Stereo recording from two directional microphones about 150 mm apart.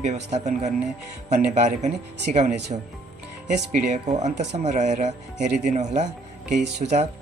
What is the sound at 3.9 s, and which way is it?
Speech, 50° right (ahead or behind).